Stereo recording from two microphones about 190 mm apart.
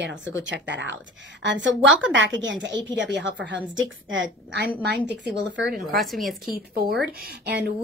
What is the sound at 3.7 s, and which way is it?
Speech, 85° right.